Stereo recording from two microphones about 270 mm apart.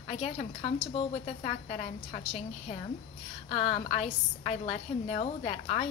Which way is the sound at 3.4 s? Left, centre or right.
Left.